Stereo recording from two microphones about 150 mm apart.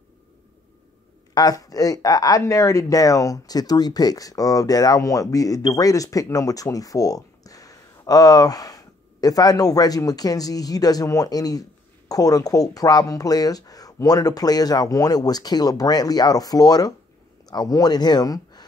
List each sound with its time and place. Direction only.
1.3 s speech: 25° left (ahead or behind)